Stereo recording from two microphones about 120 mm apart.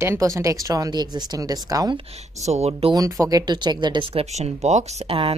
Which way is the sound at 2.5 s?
60° right (ahead or behind).